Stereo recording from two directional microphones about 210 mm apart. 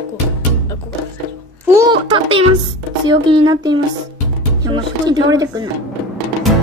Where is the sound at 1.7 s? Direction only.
25° right (ahead or behind).